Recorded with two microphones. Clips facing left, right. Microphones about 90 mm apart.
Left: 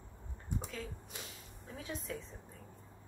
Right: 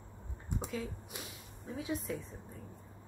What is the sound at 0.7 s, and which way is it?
Speech, 5° right (ahead or behind).